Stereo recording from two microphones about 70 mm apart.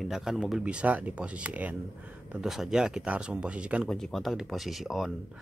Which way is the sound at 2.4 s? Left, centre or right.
Centre.